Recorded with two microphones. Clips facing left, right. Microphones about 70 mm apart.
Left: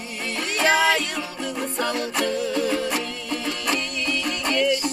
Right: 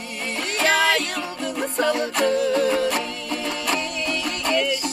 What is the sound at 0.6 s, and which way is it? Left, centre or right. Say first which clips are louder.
Music: even; centre.